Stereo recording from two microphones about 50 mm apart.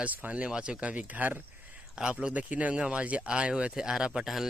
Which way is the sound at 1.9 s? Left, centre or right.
Centre.